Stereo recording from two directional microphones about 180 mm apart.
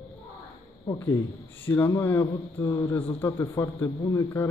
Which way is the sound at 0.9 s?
10° left (ahead or behind).